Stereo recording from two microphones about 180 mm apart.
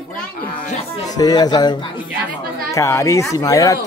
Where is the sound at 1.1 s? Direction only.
20° left (ahead or behind).